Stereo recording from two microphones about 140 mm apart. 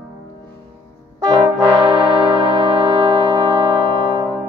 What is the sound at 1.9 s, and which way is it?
Music, 35° right (ahead or behind).